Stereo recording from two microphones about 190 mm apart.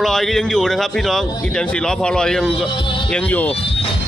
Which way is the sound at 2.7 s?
25° left (ahead or behind).